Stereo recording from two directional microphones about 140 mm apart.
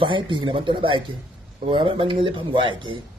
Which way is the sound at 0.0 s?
35° right (ahead or behind).